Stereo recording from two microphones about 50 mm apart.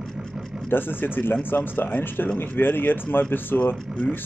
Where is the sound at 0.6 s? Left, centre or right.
Left.